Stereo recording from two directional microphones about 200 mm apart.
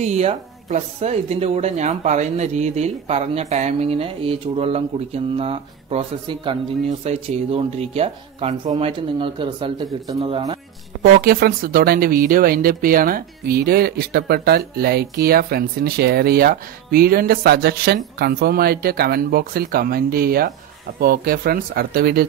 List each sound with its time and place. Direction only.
0.0 s speech: 35° right (ahead or behind)
11.0 s speech: 50° right (ahead or behind)